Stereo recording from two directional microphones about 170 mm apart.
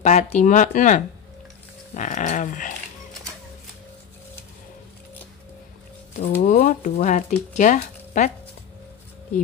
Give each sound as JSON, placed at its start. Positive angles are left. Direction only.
{"t": 0.0, "sound": "speech", "side_deg": 45}
{"t": 2.0, "sound": "a sound", "side_deg": 45}
{"t": 6.4, "sound": "speech", "side_deg": 55}